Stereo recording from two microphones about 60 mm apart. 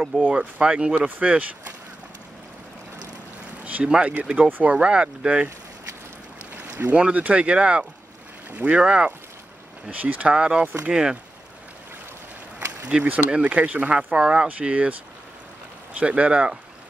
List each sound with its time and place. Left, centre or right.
0.3 s speech: centre
3.6 s speech: right
4.7 s speech: centre
6.9 s speech: right
8.5 s speech: right
8.7 s speech: centre
12.5 s a sound: right
13.3 s speech: centre